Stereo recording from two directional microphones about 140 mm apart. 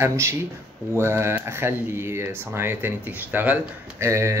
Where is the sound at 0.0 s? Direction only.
20° right (ahead or behind).